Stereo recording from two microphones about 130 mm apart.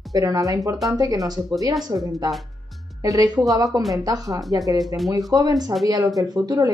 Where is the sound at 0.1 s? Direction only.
25° right (ahead or behind).